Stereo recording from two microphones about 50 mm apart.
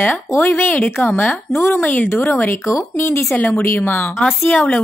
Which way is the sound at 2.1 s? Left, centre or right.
Left.